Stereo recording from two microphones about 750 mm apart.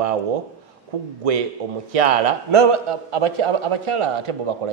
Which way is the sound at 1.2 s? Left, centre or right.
Right.